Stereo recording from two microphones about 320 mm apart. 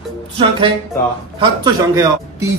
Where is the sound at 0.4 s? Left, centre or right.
Centre.